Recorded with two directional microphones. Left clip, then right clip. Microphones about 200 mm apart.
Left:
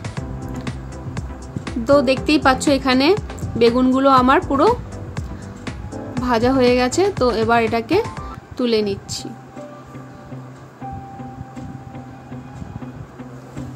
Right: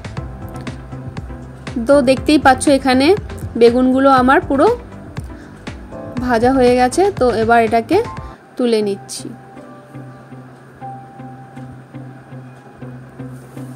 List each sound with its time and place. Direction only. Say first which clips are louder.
0.7 s music: right 1 dB; centre (ahead or behind)
1.9 s speech: right 3 dB; 15° right (ahead or behind)
6.2 s speech: right 3 dB; 10° right (ahead or behind)